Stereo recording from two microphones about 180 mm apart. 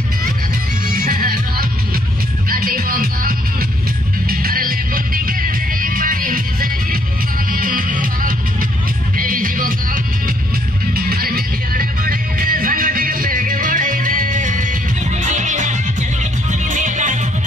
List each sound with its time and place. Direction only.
0.9 s music: 50° right (ahead or behind)
10.9 s music: 55° right (ahead or behind)